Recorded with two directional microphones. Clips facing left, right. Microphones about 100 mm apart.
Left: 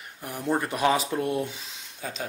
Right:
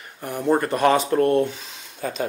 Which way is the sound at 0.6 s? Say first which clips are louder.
Right 5 dB; centre (ahead or behind).